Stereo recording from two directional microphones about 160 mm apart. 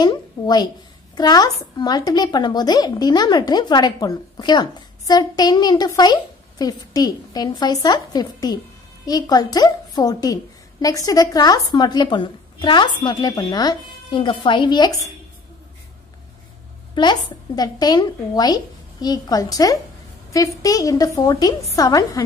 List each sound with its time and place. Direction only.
0.0 s a woman's voice: 25° left (ahead or behind)
16.9 s a woman's voice: 25° left (ahead or behind)